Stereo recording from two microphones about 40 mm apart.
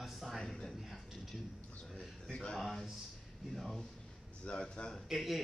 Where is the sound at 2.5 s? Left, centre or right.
Centre.